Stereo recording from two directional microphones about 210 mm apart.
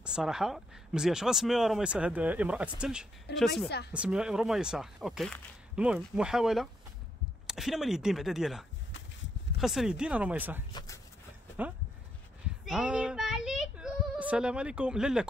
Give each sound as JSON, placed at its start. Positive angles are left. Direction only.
{"t": 0.0, "sound": "speech", "side_deg": -5}
{"t": 3.6, "sound": "speech", "side_deg": 50}
{"t": 3.9, "sound": "speech", "side_deg": -5}
{"t": 10.7, "sound": "speech", "side_deg": 20}
{"t": 12.6, "sound": "child singing", "side_deg": -5}